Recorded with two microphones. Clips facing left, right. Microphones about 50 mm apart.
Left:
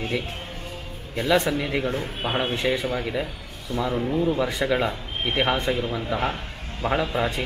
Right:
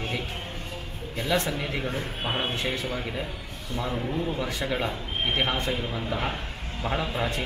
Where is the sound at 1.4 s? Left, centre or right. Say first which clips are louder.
Left 5 dB; centre.